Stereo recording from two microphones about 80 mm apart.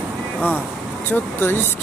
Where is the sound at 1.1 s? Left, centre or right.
Left.